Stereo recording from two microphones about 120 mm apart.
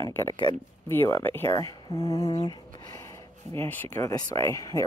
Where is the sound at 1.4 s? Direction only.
30° left (ahead or behind).